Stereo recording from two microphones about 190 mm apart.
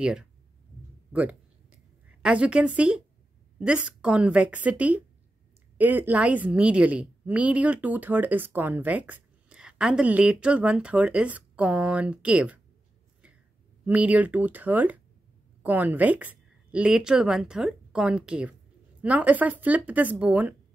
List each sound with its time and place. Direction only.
0.0 s speech: 5° right (ahead or behind)
1.1 s a sound: 5° right (ahead or behind)
3.5 s a woman's voice: 5° right (ahead or behind)
13.8 s a woman's voice: 10° right (ahead or behind)